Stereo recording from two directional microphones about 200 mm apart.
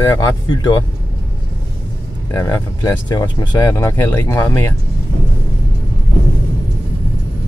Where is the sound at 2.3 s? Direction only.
15° left (ahead or behind).